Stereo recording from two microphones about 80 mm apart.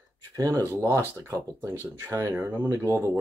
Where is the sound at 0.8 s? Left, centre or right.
Right.